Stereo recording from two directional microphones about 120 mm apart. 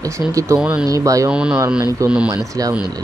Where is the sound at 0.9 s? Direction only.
30° right (ahead or behind).